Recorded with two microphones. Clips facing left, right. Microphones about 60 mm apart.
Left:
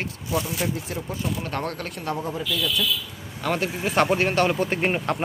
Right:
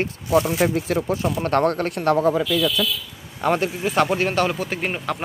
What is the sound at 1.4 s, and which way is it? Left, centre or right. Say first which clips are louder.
Speech: right 10 dB; right.